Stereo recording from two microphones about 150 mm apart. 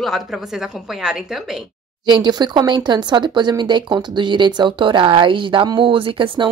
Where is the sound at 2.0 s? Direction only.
30° right (ahead or behind).